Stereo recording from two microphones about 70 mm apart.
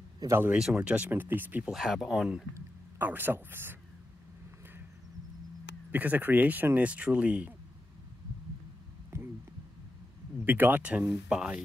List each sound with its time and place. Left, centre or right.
0.2 s speech: right
0.7 s speech: centre
1.7 s speech: centre
3.0 s speech: right
5.9 s speech: right
9.1 s a sound: right
10.4 s speech: right